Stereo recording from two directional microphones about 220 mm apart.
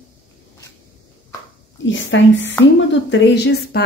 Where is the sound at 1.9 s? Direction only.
55° left (ahead or behind).